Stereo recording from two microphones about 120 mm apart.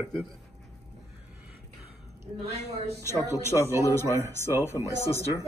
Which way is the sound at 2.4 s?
60° right (ahead or behind).